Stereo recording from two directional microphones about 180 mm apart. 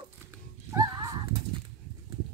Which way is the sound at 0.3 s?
20° right (ahead or behind).